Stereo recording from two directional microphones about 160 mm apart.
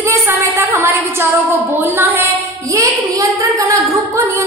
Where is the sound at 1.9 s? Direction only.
15° right (ahead or behind).